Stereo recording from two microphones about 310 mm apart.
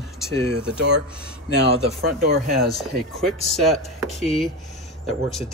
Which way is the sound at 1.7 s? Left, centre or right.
Right.